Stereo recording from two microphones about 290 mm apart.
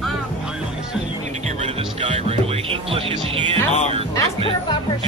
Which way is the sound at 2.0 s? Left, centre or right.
Centre.